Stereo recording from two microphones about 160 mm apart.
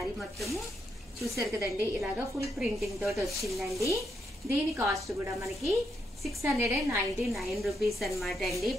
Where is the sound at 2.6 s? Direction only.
Centre (ahead or behind).